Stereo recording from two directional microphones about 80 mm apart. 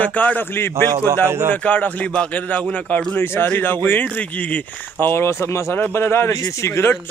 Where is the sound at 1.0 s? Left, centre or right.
Right.